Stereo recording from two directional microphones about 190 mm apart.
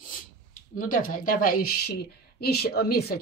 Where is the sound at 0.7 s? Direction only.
45° left (ahead or behind).